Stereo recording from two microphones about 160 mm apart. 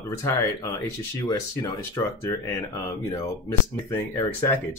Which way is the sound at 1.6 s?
20° left (ahead or behind).